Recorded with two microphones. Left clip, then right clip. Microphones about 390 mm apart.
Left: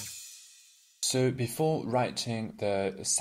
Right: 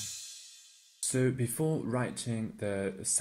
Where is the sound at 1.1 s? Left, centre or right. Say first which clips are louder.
Left 2 dB; left.